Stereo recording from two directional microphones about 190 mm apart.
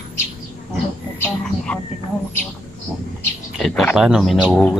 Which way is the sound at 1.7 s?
5° left (ahead or behind).